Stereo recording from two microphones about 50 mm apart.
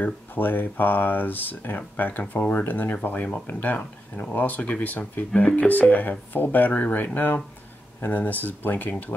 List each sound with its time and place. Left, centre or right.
0.0 s speech: left